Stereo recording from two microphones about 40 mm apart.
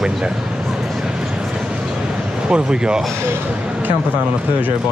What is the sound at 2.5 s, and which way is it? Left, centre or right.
Speech, right.